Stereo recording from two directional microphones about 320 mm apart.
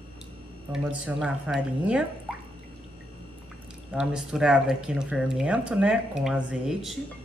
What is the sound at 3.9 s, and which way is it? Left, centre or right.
Speech, centre.